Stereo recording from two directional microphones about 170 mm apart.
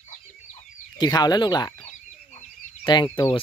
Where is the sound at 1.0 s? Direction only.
25° left (ahead or behind).